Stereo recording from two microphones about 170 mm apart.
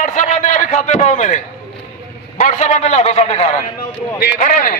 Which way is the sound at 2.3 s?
45° left (ahead or behind).